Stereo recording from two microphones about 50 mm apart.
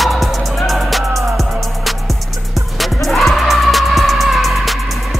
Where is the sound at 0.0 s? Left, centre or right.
Centre.